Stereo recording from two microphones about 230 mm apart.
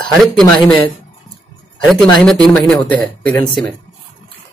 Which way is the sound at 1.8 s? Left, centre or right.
Centre.